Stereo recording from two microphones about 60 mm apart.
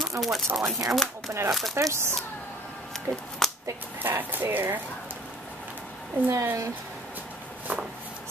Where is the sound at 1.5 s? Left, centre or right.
Centre.